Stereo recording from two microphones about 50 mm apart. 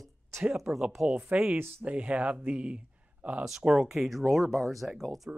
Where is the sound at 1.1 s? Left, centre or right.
Right.